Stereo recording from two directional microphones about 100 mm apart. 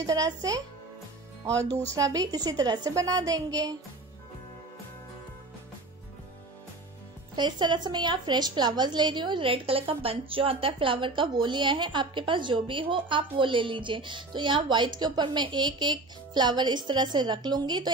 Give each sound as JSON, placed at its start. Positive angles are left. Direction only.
{"t": 0.0, "sound": "a woman's voice", "side_deg": -35}
{"t": 7.3, "sound": "a woman's voice", "side_deg": -50}